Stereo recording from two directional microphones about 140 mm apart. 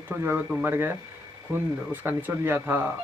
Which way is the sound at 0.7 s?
15° right (ahead or behind).